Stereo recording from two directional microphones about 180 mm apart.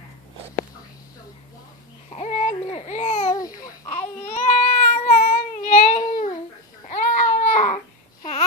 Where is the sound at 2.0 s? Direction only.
40° left (ahead or behind).